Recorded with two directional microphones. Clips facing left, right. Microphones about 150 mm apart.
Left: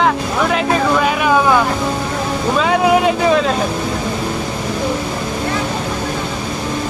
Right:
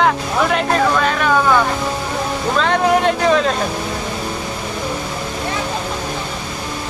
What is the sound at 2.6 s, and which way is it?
Speech, 5° left (ahead or behind).